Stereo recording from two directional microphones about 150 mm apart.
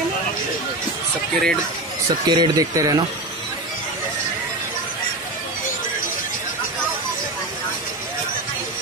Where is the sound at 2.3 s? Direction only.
25° right (ahead or behind).